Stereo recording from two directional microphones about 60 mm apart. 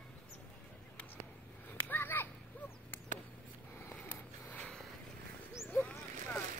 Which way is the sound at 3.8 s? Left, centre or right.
Left.